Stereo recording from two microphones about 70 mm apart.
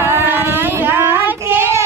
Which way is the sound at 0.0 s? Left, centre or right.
Right.